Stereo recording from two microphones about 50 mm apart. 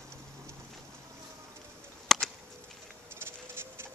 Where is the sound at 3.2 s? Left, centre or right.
Right.